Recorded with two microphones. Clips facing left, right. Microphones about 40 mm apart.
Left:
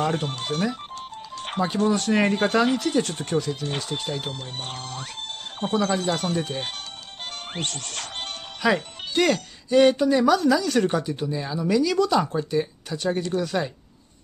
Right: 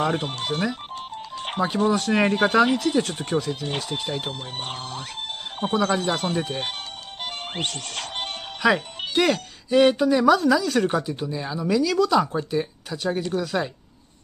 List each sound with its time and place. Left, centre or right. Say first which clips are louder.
0.0 s speech: right 1 dB; centre
4.3 s speech: right 2 dB; right; by 13.7 s centre